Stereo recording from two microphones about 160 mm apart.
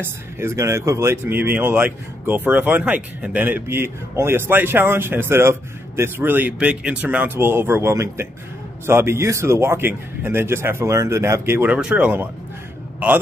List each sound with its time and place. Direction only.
0.0 s speech: 15° right (ahead or behind)